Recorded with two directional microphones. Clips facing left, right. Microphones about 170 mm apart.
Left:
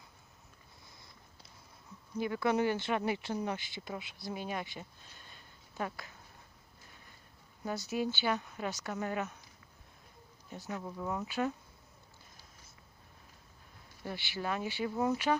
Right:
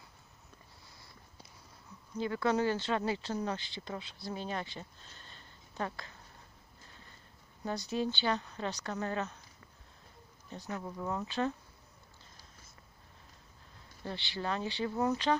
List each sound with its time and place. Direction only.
0.8 s a sound: 20° left (ahead or behind)
2.1 s speech: 15° left (ahead or behind)
8.0 s speech: 10° left (ahead or behind)
10.8 s speech: centre (ahead or behind)
11.1 s speech: 10° left (ahead or behind)
14.0 s speech: 10° left (ahead or behind)